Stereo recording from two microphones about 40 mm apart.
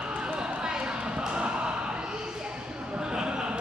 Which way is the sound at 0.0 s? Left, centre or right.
Right.